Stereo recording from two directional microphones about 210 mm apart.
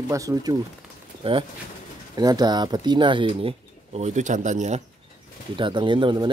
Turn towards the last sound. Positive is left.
turn(degrees=-20)  # may be behind; listen again after turning